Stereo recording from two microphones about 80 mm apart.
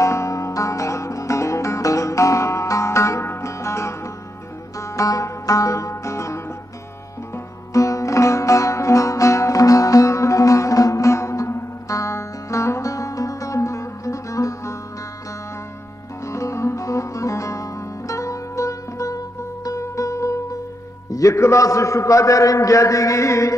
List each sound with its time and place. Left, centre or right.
0.0 s music: left
7.7 s music: left
16.3 s music: left
21.1 s a man's voice: left